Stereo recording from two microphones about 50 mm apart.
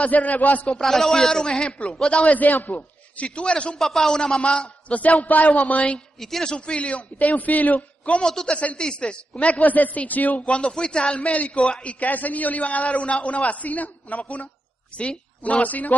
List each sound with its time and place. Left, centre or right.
0.0 s a man's voice: left
0.7 s a man's voice: centre
2.0 s a man's voice: left
3.7 s a man's voice: centre; by 5.9 s left
6.1 s a man's voice: centre
6.5 s a man's voice: left
8.3 s a man's voice: centre
9.4 s a man's voice: left